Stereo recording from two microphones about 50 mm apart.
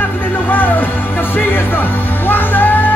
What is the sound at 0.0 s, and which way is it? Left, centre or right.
Music, left.